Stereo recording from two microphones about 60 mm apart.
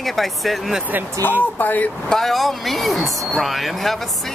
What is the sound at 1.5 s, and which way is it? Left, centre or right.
Speech, left.